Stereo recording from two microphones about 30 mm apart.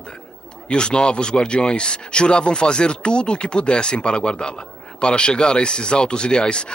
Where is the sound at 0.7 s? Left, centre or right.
Left.